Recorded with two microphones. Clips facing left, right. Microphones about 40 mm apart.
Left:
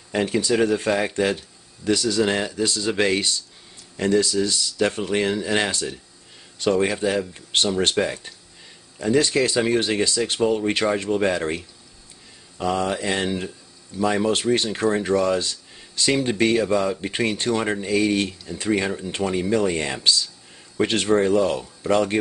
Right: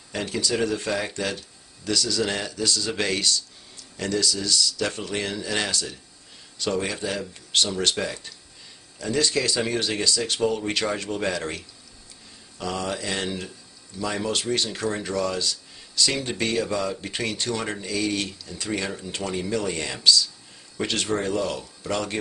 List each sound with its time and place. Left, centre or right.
0.1 s speech: left